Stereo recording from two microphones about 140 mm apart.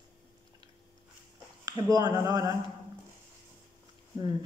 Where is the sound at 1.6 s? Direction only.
25° right (ahead or behind).